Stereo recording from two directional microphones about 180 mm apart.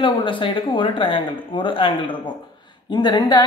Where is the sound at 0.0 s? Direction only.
30° left (ahead or behind).